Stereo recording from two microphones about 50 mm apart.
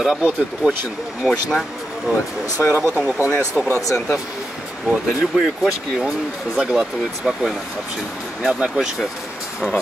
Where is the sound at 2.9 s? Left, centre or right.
Right.